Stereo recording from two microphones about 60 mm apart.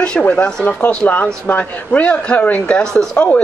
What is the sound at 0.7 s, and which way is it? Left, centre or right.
Speech, left.